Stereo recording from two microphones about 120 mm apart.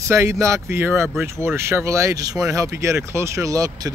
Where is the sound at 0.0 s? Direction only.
25° right (ahead or behind).